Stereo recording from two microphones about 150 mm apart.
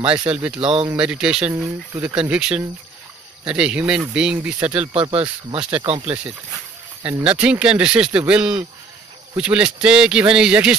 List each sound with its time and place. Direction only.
0.3 s speech: 10° right (ahead or behind)
5.1 s speech: 40° right (ahead or behind)
5.6 s speech: 10° right (ahead or behind)
5.9 s speech: 40° right (ahead or behind)
7.0 s speech: 15° right (ahead or behind)